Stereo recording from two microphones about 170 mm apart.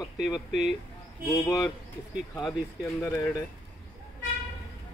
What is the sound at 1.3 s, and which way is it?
Speech, 20° left (ahead or behind).